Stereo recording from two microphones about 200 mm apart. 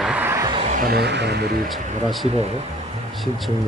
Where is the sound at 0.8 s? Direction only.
55° right (ahead or behind).